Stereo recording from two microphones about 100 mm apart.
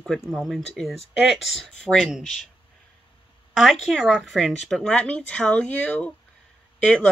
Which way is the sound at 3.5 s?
Centre (ahead or behind).